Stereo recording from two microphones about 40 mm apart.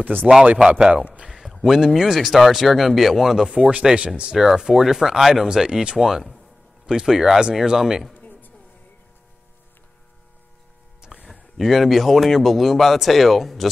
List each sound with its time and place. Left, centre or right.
0.0 s speech: right
0.7 s speech: centre
1.3 s speech: centre
3.4 s speech: centre
5.6 s speech: centre
5.9 s speech: centre
8.1 s a sound: left
11.0 s music: centre
11.5 s speech: centre